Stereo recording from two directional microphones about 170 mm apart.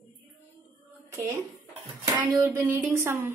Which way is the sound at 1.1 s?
15° right (ahead or behind).